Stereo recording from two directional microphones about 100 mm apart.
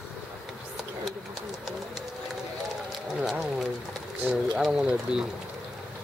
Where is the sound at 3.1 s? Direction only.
5° right (ahead or behind).